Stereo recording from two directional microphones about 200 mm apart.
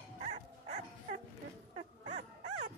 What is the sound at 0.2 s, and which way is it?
Dog, 30° right (ahead or behind).